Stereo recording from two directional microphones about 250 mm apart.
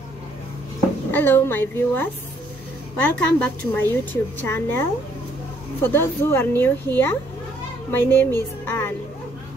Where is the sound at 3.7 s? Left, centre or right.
Centre.